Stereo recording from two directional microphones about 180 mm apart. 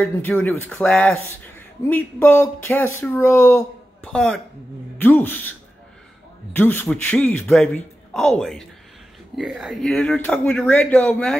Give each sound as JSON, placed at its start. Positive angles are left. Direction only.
{"t": 0.0, "sound": "speech", "side_deg": 5}
{"t": 6.5, "sound": "a man's voice", "side_deg": 10}